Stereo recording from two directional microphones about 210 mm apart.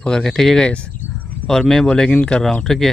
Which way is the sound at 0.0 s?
5° left (ahead or behind).